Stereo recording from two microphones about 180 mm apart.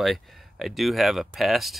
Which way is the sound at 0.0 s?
Centre (ahead or behind).